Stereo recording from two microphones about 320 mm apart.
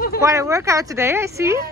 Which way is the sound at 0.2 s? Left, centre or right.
Centre.